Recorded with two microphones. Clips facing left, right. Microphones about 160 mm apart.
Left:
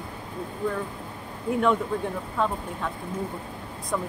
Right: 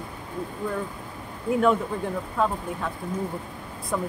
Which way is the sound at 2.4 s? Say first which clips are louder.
Right 1 dB; 5° right (ahead or behind).